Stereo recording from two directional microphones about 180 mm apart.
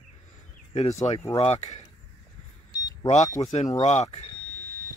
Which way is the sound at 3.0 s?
40° left (ahead or behind).